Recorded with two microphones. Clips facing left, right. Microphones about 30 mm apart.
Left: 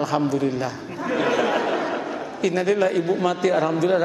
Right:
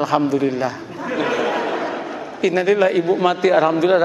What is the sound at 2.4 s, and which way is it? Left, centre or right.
A man's voice, centre.